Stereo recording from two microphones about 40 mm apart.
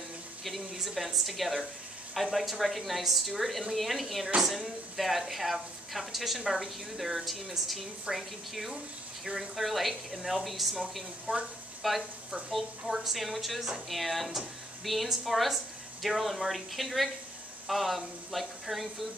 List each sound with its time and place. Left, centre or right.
0.7 s speech: centre
11.3 s speech: right
11.8 s speech: centre